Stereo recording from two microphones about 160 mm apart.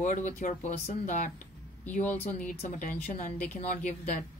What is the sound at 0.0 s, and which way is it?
Speech, 50° left (ahead or behind).